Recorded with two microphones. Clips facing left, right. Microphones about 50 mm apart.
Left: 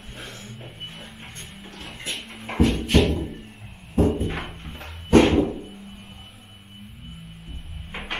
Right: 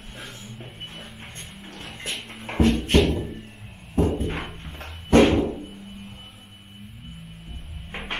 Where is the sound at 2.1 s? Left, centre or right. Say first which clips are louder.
Even; centre.